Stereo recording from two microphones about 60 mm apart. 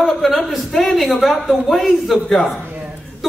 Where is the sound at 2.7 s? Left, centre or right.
Right.